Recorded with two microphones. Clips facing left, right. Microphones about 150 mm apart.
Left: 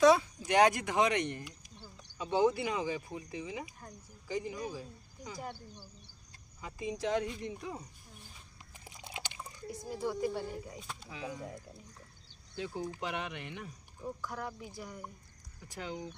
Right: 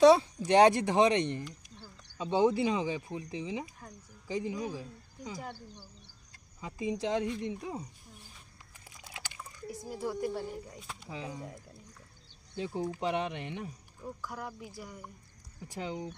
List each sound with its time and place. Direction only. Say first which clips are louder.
0.0 s speech: right 4 dB; 30° right (ahead or behind)
6.6 s speech: right 3 dB; 25° right (ahead or behind)
8.8 s typing: left 3 dB; 20° left (ahead or behind)
9.7 s speech: even; 5° right (ahead or behind)
11.1 s speech: right 2 dB; 25° right (ahead or behind)
12.5 s speech: right 4 dB; 25° right (ahead or behind)
14.0 s speech: left 1 dB; 5° right (ahead or behind)
15.7 s speech: right 3 dB; 25° right (ahead or behind)